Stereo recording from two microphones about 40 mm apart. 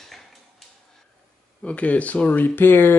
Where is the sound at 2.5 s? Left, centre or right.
Left.